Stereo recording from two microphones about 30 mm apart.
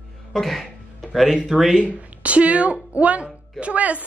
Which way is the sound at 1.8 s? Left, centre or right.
Right.